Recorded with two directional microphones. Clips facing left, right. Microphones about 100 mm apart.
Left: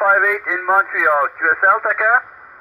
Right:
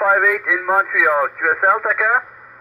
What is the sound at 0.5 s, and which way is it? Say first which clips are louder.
Speech: left 1 dB; 20° left (ahead or behind).